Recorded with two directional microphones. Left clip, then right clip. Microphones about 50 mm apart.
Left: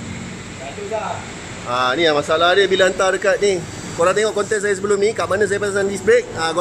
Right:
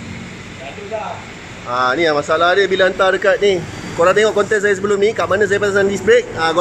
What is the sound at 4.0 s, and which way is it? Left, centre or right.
Speech, centre.